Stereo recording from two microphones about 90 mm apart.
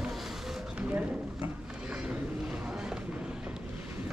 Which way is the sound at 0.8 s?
15° right (ahead or behind).